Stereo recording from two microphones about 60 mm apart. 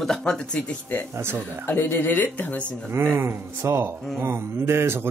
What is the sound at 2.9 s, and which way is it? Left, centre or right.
Speech, right.